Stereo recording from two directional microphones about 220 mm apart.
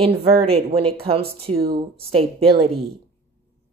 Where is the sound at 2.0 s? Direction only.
25° right (ahead or behind).